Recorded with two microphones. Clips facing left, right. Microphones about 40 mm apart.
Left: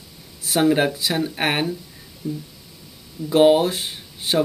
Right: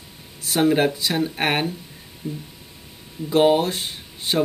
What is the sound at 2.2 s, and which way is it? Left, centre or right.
Speech, right.